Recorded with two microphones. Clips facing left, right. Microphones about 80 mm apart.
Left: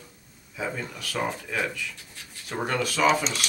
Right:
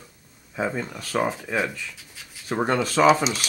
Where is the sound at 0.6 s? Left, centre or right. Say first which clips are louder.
Right 5 dB; right.